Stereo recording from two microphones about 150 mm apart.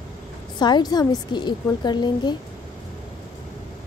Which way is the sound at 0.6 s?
30° left (ahead or behind).